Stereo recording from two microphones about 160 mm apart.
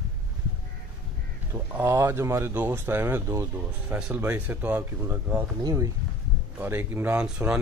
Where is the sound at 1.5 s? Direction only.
10° right (ahead or behind).